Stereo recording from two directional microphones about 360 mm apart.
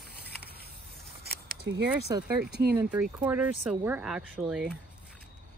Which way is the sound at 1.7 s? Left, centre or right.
Right.